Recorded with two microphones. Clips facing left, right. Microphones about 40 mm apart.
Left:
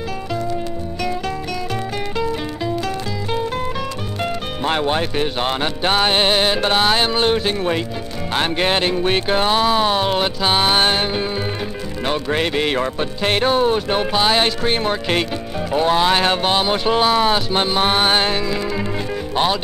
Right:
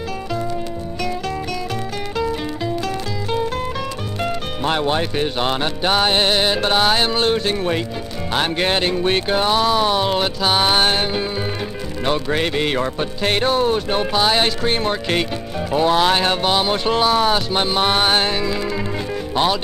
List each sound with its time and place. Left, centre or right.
2.1 s music: centre
4.2 s speech: centre
5.9 s speech: centre
10.6 s music: centre
12.1 s speech: centre
15.7 s music: centre
16.2 s speech: centre